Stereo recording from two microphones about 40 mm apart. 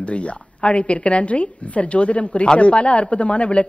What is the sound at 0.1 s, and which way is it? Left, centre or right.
A woman's voice, left.